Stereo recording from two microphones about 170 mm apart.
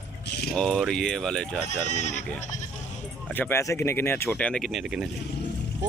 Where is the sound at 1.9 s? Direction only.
45° left (ahead or behind).